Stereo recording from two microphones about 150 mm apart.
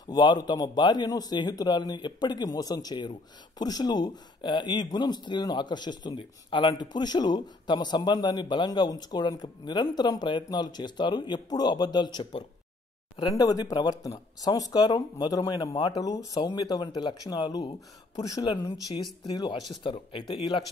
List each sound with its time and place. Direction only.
0.0 s speech: 30° left (ahead or behind)